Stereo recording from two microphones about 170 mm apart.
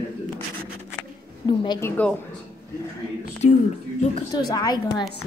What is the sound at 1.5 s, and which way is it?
Speech, 25° left (ahead or behind).